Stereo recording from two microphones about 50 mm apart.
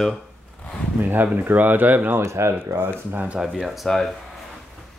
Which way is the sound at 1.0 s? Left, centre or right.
Right.